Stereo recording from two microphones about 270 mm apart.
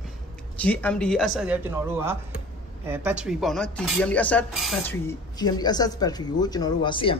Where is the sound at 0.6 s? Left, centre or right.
Centre.